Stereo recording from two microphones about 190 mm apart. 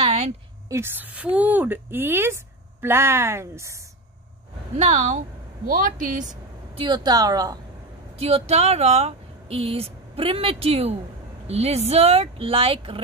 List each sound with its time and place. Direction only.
0.0 s a sound: 35° right (ahead or behind)
0.7 s a woman's voice: 10° right (ahead or behind)
4.7 s a woman's voice: 35° right (ahead or behind)
6.8 s speech: 20° right (ahead or behind)
8.2 s speech: 35° right (ahead or behind)